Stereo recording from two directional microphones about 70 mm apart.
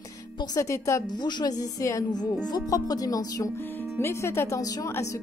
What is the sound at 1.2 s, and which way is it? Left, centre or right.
Speech, left.